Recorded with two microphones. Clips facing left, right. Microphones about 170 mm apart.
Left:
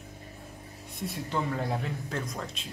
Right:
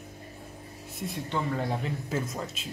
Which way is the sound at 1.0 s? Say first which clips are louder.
Even; centre (ahead or behind).